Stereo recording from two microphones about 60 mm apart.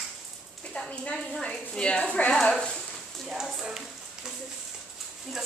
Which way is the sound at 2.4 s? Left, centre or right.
Centre.